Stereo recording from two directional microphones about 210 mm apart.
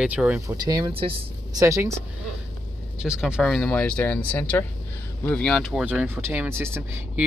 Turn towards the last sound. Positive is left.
turn(degrees=-10)  # may be behind; listen again after turning